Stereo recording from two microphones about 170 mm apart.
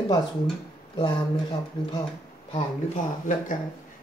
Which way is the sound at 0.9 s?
30° left (ahead or behind).